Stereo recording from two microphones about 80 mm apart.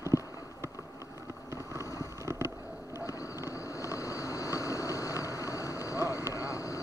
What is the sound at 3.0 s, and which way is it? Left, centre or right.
Vehicle, left.